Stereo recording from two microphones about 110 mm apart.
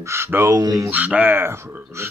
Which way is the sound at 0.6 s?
35° right (ahead or behind).